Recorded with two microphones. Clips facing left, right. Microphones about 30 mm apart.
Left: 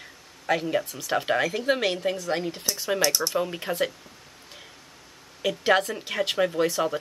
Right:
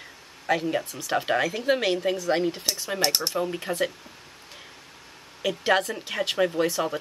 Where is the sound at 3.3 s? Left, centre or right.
Centre.